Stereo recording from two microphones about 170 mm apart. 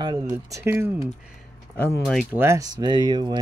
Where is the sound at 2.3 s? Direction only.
15° right (ahead or behind).